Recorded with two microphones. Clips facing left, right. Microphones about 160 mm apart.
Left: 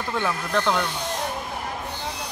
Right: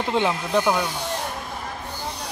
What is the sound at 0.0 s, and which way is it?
Speech, 20° right (ahead or behind).